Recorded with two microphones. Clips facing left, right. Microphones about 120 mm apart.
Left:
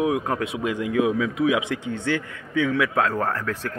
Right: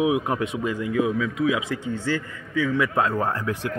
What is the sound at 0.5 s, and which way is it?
Speech, 15° left (ahead or behind).